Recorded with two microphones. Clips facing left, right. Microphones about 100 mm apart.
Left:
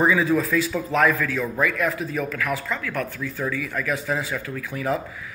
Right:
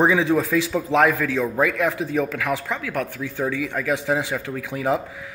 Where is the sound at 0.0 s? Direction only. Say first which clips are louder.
Right 1 dB; 80° right.